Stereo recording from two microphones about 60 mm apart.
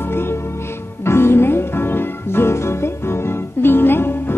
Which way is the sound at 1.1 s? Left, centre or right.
Left.